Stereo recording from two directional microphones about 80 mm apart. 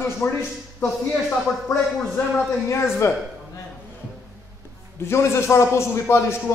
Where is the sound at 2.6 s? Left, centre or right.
Left.